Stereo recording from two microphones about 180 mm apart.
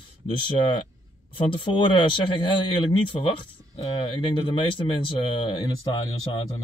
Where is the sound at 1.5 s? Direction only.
25° left (ahead or behind).